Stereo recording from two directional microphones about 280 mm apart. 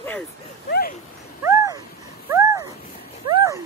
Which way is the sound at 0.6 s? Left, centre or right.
Left.